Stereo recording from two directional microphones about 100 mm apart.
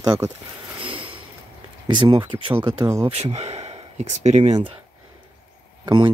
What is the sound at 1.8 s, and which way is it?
Speech, 45° right (ahead or behind).